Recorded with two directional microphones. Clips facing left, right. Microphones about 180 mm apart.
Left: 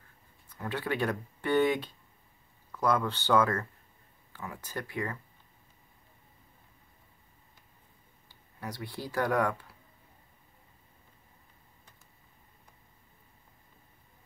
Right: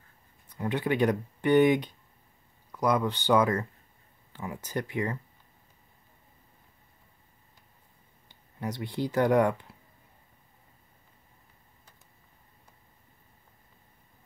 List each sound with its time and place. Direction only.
0.5 s speech: 20° right (ahead or behind)
8.3 s speech: 20° right (ahead or behind)